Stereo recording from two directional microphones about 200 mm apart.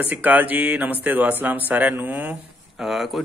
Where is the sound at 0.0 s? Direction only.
10° right (ahead or behind).